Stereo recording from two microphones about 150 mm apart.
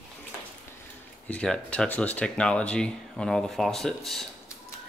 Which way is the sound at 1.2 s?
5° left (ahead or behind).